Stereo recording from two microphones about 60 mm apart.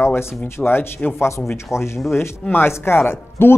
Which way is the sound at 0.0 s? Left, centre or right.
Left.